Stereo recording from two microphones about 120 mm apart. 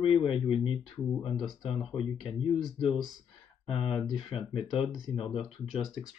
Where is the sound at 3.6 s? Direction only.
50° left (ahead or behind).